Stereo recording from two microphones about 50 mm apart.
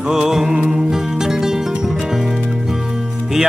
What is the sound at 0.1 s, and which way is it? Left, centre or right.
Music, centre.